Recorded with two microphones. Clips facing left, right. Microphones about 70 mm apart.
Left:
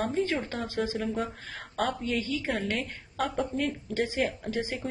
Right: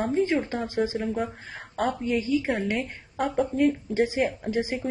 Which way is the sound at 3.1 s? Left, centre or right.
Centre.